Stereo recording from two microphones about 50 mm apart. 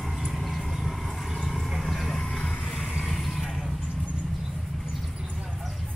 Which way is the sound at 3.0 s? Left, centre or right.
Centre.